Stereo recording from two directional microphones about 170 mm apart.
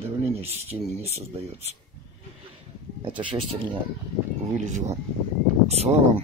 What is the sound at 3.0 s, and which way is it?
Speech, 30° right (ahead or behind).